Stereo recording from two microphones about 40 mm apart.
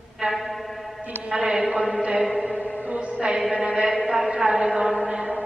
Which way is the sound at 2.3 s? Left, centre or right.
Centre.